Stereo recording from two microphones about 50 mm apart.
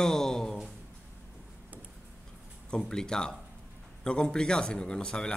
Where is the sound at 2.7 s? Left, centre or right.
Centre.